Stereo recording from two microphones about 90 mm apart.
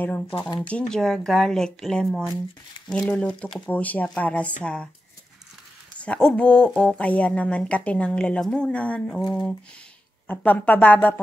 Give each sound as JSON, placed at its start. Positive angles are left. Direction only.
{"t": 0.0, "sound": "speech", "side_deg": 20}
{"t": 5.9, "sound": "speech", "side_deg": 10}
{"t": 10.2, "sound": "speech", "side_deg": 20}